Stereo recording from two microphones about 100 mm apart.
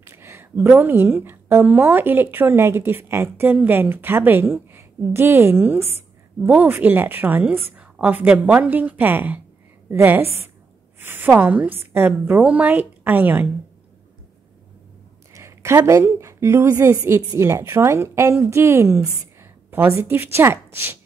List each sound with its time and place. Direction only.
0.0 s a woman's voice: 25° right (ahead or behind)
15.3 s a woman's voice: 30° right (ahead or behind)